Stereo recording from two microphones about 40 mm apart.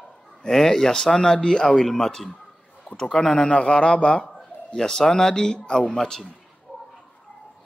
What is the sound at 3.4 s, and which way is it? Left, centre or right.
A man's voice, left.